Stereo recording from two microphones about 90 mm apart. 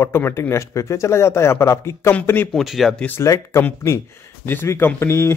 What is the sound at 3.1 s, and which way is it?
Speech, 35° left (ahead or behind).